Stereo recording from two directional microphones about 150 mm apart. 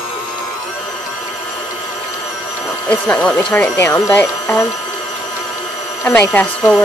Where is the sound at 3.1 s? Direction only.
5° left (ahead or behind).